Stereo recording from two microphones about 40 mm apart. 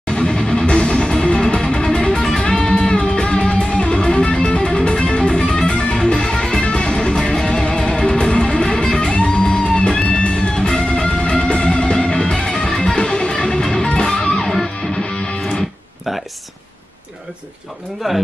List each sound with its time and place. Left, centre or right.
0.1 s music: left